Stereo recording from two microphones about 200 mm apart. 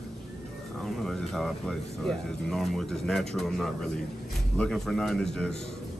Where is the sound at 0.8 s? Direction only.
Centre (ahead or behind).